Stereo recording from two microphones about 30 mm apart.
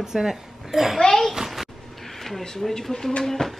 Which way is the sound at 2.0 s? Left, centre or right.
Centre.